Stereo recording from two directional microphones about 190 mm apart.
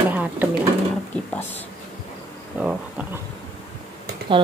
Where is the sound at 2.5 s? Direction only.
5° right (ahead or behind).